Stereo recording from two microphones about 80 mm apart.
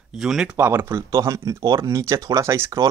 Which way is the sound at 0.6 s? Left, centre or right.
Right.